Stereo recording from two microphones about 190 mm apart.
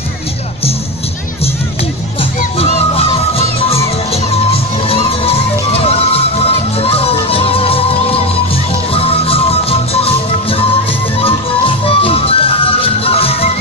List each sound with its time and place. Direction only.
2.6 s music: 30° left (ahead or behind)